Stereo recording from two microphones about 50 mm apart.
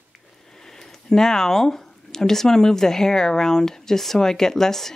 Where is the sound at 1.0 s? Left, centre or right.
Centre.